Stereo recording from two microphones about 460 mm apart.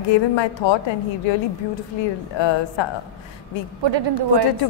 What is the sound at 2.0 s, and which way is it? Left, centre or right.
Speech, left.